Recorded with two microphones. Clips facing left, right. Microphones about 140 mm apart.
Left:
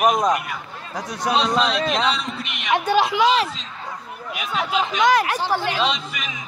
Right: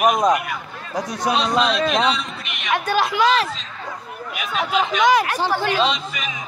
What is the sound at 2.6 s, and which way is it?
Speech, 25° left (ahead or behind).